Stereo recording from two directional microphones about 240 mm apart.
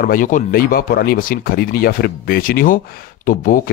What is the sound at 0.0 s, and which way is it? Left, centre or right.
Speech, left.